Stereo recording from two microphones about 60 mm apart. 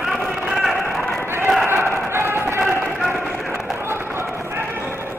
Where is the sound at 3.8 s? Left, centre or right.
Right.